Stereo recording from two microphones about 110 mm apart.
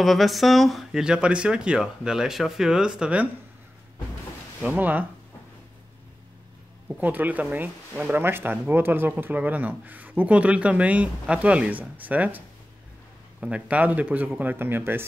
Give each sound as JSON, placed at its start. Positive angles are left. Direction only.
{"t": 0.0, "sound": "speech", "side_deg": 0}
{"t": 4.6, "sound": "speech", "side_deg": -15}
{"t": 6.9, "sound": "speech", "side_deg": -15}